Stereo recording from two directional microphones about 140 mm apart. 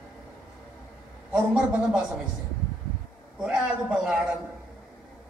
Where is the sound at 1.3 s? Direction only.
5° right (ahead or behind).